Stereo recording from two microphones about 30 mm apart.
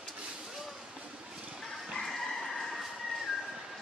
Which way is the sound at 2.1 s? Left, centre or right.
Centre.